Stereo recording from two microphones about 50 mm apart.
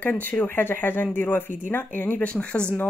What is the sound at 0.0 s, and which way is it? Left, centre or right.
Speech, left.